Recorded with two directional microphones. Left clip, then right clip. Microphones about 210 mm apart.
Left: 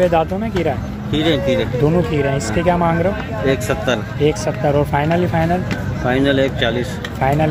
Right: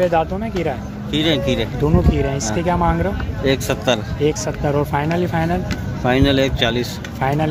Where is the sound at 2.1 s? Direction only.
Centre (ahead or behind).